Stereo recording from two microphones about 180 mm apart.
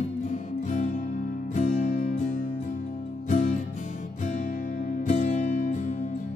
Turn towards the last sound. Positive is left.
turn(degrees=45)  # may be behind; listen again after turning